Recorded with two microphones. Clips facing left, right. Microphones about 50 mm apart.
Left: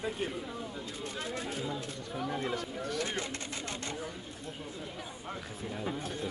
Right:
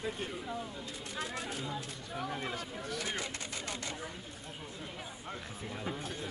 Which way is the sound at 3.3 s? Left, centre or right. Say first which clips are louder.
Left 2 dB; left.